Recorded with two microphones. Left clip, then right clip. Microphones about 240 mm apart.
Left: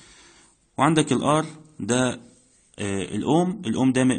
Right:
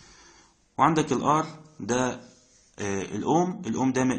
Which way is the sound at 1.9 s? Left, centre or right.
Left.